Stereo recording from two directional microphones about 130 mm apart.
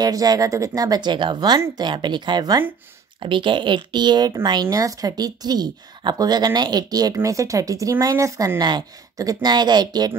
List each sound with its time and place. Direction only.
0.0 s speech: 30° right (ahead or behind)